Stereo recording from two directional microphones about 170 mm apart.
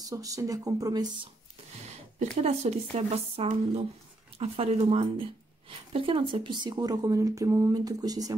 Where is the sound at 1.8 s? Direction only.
40° right (ahead or behind).